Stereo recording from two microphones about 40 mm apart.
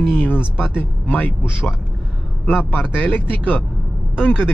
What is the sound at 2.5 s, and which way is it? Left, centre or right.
Speech, left.